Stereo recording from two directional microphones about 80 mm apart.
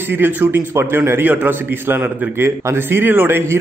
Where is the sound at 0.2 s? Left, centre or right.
Right.